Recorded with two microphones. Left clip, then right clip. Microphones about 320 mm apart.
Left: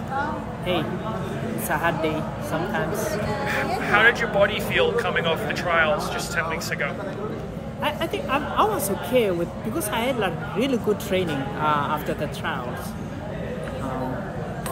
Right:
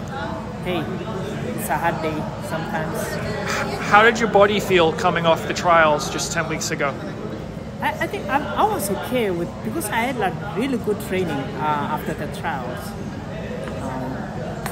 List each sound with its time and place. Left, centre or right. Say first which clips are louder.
1.7 s speech: right 1 dB; centre
3.4 s speech: right 2 dB; centre
7.8 s speech: right 2 dB; centre